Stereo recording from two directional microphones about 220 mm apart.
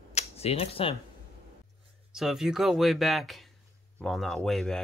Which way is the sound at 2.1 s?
Centre (ahead or behind).